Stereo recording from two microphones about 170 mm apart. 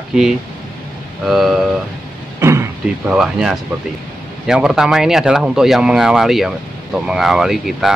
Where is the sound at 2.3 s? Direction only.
15° right (ahead or behind).